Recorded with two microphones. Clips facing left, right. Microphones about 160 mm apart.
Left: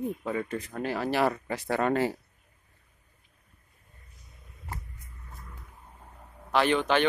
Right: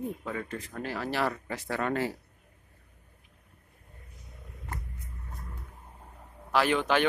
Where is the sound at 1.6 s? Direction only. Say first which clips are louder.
Left 4 dB; 25° left (ahead or behind).